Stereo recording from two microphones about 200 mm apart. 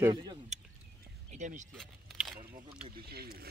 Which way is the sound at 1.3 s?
35° right (ahead or behind).